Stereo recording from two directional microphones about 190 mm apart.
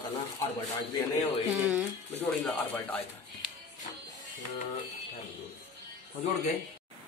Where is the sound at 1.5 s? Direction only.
10° right (ahead or behind).